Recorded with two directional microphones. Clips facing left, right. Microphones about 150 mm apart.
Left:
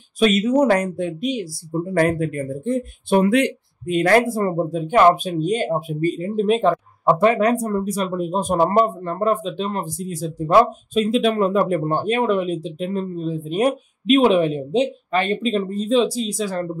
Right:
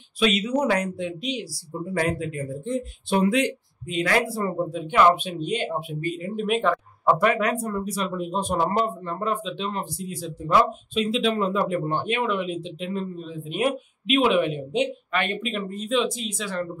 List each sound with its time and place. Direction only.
0.2 s speech: 45° left (ahead or behind)